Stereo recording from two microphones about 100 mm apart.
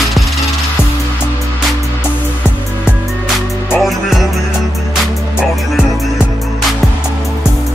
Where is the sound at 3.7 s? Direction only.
Centre (ahead or behind).